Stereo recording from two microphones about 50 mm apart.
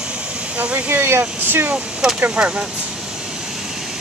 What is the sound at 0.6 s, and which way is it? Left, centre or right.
Speech, right.